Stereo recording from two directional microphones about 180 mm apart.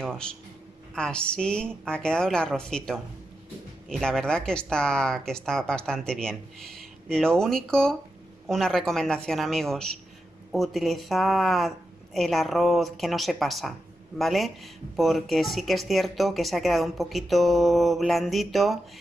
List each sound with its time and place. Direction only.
0.9 s speech: 5° left (ahead or behind)